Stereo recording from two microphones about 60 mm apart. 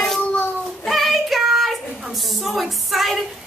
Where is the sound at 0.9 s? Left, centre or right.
Centre.